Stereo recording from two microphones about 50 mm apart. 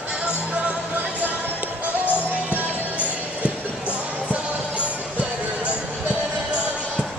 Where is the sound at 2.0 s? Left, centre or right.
Left.